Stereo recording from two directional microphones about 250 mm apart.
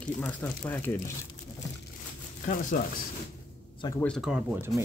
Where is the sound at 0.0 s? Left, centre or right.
Centre.